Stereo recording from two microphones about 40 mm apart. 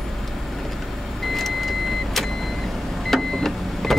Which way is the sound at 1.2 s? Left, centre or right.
Centre.